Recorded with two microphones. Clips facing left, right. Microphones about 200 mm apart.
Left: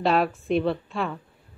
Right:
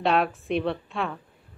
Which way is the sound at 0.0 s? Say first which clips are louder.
Left 1 dB; centre (ahead or behind).